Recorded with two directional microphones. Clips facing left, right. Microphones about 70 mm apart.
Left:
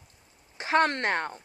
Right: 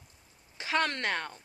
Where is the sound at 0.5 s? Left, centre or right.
Left.